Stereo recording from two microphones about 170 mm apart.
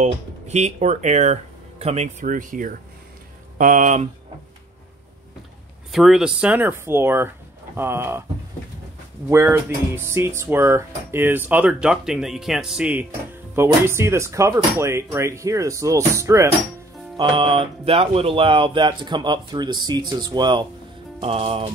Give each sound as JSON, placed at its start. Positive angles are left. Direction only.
{"t": 0.0, "sound": "speech", "side_deg": -40}
{"t": 5.9, "sound": "speech", "side_deg": 0}
{"t": 9.3, "sound": "speech", "side_deg": -15}
{"t": 17.2, "sound": "speech", "side_deg": -30}